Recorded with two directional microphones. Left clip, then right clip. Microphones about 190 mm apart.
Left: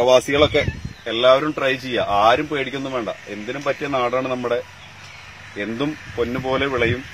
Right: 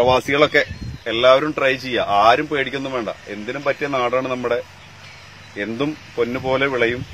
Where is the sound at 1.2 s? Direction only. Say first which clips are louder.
Right 1 dB; 10° right (ahead or behind).